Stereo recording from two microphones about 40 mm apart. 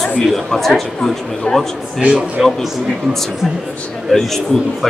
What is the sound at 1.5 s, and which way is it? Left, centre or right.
Speech, left.